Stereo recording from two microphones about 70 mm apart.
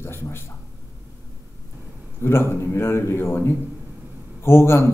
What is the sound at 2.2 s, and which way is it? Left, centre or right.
A man's voice, left.